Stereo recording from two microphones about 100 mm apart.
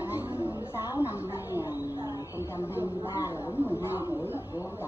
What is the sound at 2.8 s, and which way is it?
Speech, 25° left (ahead or behind).